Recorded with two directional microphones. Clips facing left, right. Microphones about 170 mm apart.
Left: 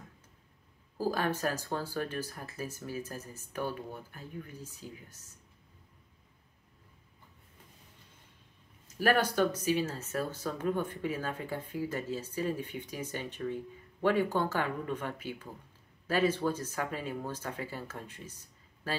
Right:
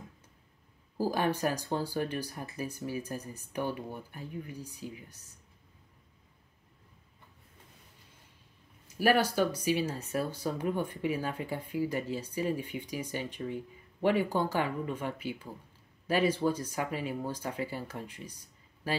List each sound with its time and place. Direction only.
0.9 s speech: 15° right (ahead or behind)
8.8 s speech: 10° right (ahead or behind)